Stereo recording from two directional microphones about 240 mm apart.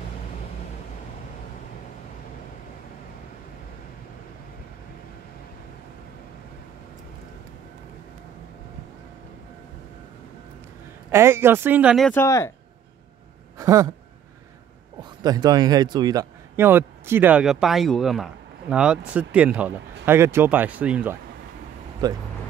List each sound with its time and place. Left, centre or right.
11.1 s a man's voice: centre
12.1 s speech: centre
13.6 s a sound: centre
15.0 s a man's voice: centre
22.0 s a man's voice: centre